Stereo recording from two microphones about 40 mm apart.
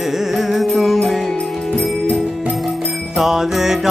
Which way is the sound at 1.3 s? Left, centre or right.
Left.